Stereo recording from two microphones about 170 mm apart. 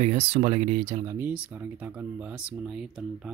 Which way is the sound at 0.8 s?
25° right (ahead or behind).